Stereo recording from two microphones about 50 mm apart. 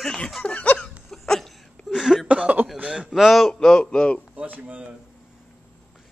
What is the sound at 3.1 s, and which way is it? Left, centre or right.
Speech, centre.